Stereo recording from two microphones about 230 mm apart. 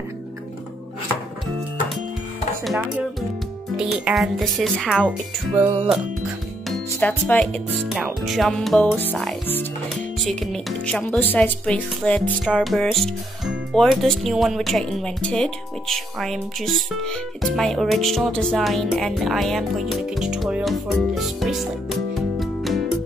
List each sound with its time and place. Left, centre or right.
2.6 s speech: centre
5.6 s music: right
6.7 s speech: centre